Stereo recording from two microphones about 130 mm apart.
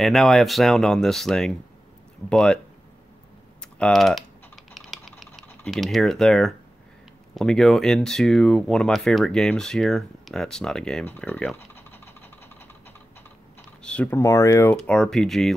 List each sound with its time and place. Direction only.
0.0 s speech: centre (ahead or behind)
3.7 s speech: 5° left (ahead or behind)
4.7 s typing: centre (ahead or behind)
5.7 s speech: centre (ahead or behind)
11.1 s typing: 10° left (ahead or behind)
14.1 s speech: 25° left (ahead or behind)
14.7 s speech: 5° left (ahead or behind)